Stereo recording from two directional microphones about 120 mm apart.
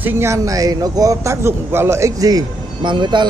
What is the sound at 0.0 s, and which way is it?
Speech, 20° right (ahead or behind).